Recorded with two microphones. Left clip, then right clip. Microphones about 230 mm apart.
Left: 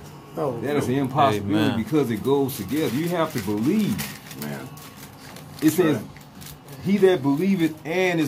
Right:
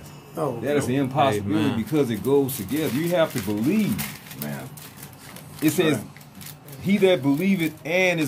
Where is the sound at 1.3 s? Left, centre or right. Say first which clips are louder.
Left 1 dB; centre.